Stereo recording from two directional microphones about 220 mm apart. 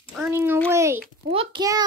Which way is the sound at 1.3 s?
25° right (ahead or behind).